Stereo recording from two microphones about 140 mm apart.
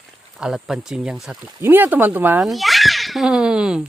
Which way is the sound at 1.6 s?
15° right (ahead or behind).